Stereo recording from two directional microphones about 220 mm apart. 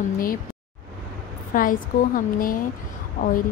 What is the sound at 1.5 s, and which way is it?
Speech, 40° left (ahead or behind).